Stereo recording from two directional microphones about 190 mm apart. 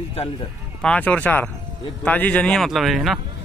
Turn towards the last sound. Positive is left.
turn(degrees=0)  # may be behind; listen again after turning